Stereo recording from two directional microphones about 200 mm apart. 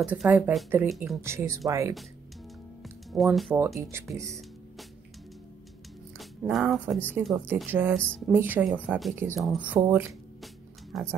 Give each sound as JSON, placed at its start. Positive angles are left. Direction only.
{"t": 0.0, "sound": "speech", "side_deg": -5}
{"t": 1.2, "sound": "speech", "side_deg": -15}
{"t": 2.8, "sound": "music", "side_deg": 0}
{"t": 3.5, "sound": "speech", "side_deg": -15}
{"t": 6.1, "sound": "speech", "side_deg": 0}
{"t": 7.3, "sound": "speech", "side_deg": -10}
{"t": 10.4, "sound": "music", "side_deg": 0}